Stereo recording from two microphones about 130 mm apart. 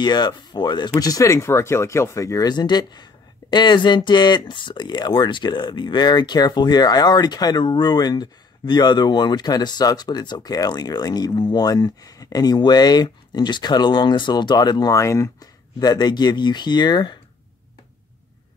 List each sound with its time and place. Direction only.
0.0 s speech: 35° left (ahead or behind)